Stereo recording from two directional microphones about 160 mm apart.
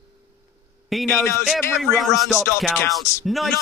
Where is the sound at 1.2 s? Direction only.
15° left (ahead or behind).